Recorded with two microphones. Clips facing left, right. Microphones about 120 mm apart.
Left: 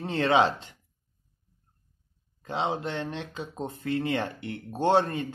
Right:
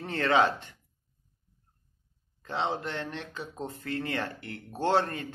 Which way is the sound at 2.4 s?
15° left (ahead or behind).